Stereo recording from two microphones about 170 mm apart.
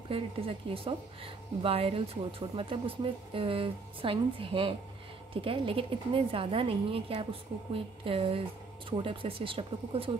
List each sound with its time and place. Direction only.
0.1 s a woman's voice: 35° right (ahead or behind)